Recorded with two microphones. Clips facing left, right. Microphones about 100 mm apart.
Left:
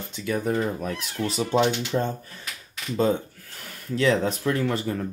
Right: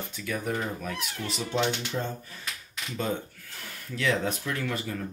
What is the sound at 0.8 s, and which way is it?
Speech, 40° left (ahead or behind).